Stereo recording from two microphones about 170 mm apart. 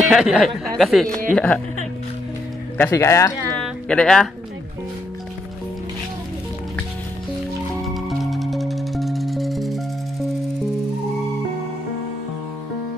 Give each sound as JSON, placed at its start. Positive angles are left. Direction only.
{"t": 0.1, "sound": "speech", "side_deg": 0}
{"t": 2.8, "sound": "speech", "side_deg": 15}
{"t": 3.5, "sound": "a sound", "side_deg": 5}
{"t": 7.8, "sound": "music", "side_deg": 0}